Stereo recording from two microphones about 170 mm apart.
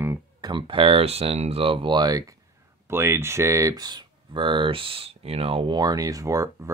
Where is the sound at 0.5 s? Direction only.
30° right (ahead or behind).